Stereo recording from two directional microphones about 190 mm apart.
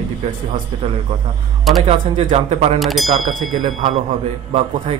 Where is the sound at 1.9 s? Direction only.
35° right (ahead or behind).